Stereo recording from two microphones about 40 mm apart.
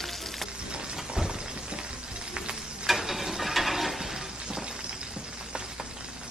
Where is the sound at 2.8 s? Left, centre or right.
Centre.